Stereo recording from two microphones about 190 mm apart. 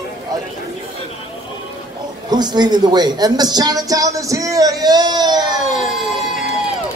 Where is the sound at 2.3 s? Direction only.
20° right (ahead or behind).